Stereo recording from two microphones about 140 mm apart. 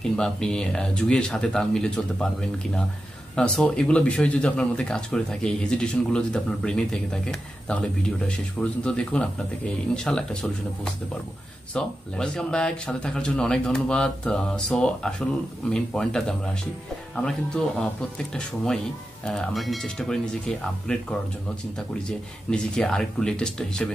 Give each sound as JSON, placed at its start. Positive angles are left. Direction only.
{"t": 0.0, "sound": "speech", "side_deg": 5}
{"t": 3.3, "sound": "speech", "side_deg": 5}
{"t": 22.5, "sound": "speech", "side_deg": 5}